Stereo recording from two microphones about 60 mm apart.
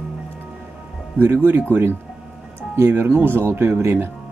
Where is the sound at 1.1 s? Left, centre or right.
Right.